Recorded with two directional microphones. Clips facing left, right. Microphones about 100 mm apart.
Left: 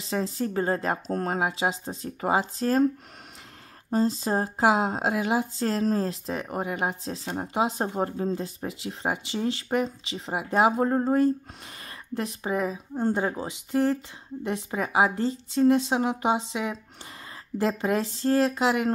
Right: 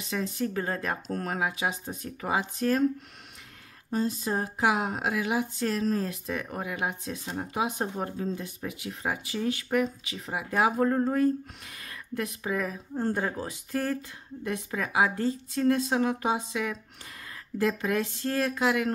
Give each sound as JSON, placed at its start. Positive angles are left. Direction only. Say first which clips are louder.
{"t": 0.1, "sound": "speech", "louder": "left 3 dB", "side_deg": 35}
{"t": 3.9, "sound": "speech", "louder": "left 4 dB", "side_deg": 30}
{"t": 17.6, "sound": "speech", "louder": "left 2 dB", "side_deg": 30}